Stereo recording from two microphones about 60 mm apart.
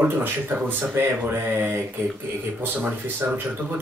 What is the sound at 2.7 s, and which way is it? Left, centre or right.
Speech, right.